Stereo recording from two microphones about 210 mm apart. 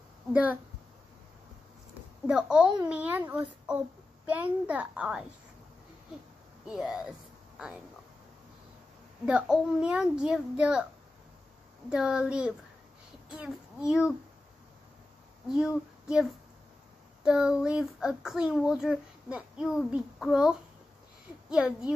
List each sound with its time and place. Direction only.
0.3 s a child's voice: 5° right (ahead or behind)
2.2 s a child's voice: 5° right (ahead or behind)
6.6 s speech: centre (ahead or behind)
9.2 s a child's voice: 5° right (ahead or behind)
11.9 s a child's voice: 5° right (ahead or behind)
15.4 s a child's voice: centre (ahead or behind)